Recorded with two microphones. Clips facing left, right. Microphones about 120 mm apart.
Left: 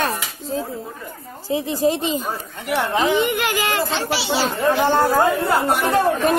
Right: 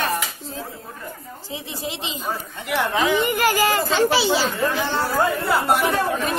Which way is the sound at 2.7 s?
25° left (ahead or behind).